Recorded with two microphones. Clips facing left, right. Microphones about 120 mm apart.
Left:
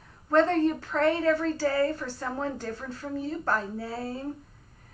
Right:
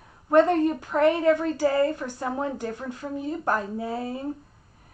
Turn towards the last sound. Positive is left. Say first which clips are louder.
# right 4 dB
turn(degrees=-15)  # may be behind; listen again after turning